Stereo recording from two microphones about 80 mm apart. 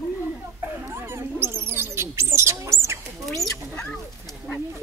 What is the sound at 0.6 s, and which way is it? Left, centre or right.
Speech, right.